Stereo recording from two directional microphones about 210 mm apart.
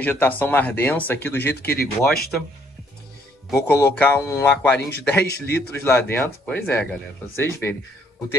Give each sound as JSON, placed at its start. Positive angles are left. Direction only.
{"t": 0.0, "sound": "speech", "side_deg": 10}
{"t": 3.5, "sound": "speech", "side_deg": 10}
{"t": 5.2, "sound": "a man's voice", "side_deg": 50}
{"t": 5.9, "sound": "speech", "side_deg": 10}